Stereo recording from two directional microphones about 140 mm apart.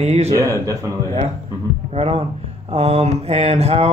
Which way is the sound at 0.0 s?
50° right (ahead or behind).